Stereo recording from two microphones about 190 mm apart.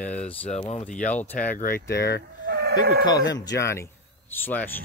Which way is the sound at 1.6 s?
55° left (ahead or behind).